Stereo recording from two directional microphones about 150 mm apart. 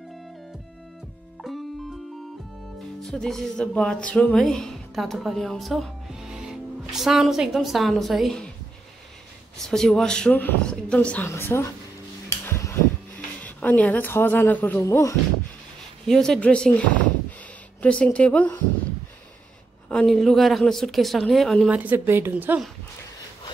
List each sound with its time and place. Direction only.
1.4 s music: centre (ahead or behind)
3.0 s speech: centre (ahead or behind)
9.7 s a woman's voice: centre (ahead or behind)
12.3 s a sound: 20° left (ahead or behind)
13.4 s speech: 10° left (ahead or behind)
16.1 s a woman's voice: 5° left (ahead or behind)
19.9 s a woman's voice: 5° left (ahead or behind)
21.6 s speech: 10° right (ahead or behind)